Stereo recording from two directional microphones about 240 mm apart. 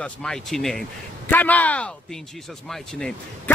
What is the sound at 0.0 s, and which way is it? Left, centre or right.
Speech, centre.